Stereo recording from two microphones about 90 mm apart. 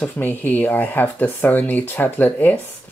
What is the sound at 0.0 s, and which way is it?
Speech, 20° left (ahead or behind).